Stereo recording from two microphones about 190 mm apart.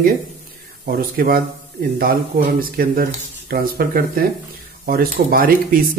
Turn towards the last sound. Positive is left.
turn(degrees=-50)  # may be behind; listen again after turning